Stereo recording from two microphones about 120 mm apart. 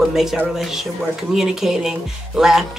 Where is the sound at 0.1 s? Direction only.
5° right (ahead or behind).